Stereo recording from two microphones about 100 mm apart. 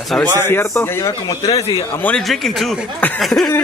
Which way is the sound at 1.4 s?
90° left.